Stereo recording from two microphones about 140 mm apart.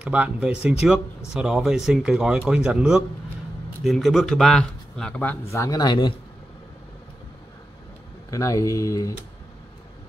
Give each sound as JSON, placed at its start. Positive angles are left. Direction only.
{"t": 0.0, "sound": "speech", "side_deg": -10}
{"t": 8.3, "sound": "speech", "side_deg": 25}